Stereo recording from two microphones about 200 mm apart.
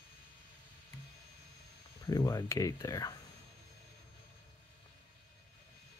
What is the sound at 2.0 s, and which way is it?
Speech, 15° left (ahead or behind).